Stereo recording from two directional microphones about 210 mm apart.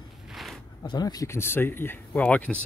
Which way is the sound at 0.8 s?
20° left (ahead or behind).